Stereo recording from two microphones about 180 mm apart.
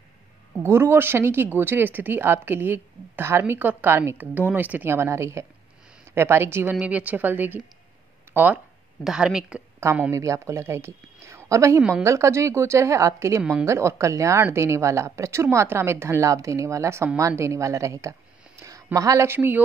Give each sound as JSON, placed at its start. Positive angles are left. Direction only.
{"t": 0.6, "sound": "a woman's voice", "side_deg": -15}
{"t": 13.4, "sound": "speech", "side_deg": -5}
{"t": 13.7, "sound": "speech", "side_deg": -15}